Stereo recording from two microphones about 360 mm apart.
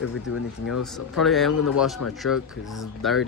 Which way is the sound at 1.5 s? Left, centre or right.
Left.